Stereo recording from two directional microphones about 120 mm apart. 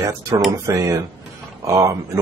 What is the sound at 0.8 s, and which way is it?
A man's voice, 30° right (ahead or behind).